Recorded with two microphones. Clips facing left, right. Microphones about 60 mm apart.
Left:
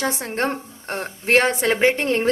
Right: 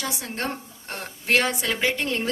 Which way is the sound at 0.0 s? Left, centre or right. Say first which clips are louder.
Left 7 dB; left.